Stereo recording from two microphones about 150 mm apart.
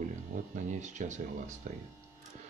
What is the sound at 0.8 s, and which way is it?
Speech, 50° right (ahead or behind).